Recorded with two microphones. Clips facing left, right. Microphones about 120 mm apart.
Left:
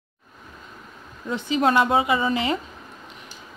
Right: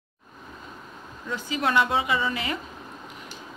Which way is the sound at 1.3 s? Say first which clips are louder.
Left 6 dB; 20° left (ahead or behind).